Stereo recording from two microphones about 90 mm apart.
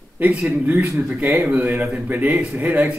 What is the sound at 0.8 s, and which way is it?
Speech, 25° right (ahead or behind).